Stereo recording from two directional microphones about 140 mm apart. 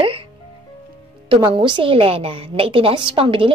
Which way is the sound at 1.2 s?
35° right (ahead or behind).